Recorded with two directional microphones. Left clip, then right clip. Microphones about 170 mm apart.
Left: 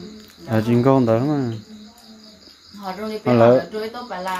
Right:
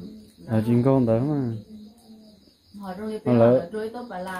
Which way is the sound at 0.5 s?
15° left (ahead or behind).